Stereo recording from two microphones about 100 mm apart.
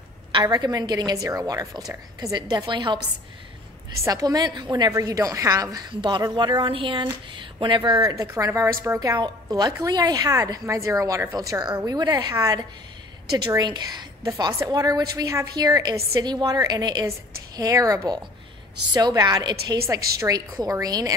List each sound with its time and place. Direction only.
0.3 s a woman's voice: 50° right (ahead or behind)
4.0 s a woman's voice: 40° right (ahead or behind)
8.5 s a woman's voice: 25° right (ahead or behind)
9.2 s a woman's voice: 45° right (ahead or behind)